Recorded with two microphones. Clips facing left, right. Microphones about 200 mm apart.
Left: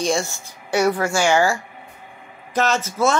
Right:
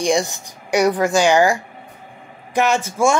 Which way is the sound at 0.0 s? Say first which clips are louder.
Right 3 dB; 15° right (ahead or behind).